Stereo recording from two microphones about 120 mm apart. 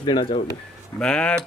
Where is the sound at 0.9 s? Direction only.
5° left (ahead or behind).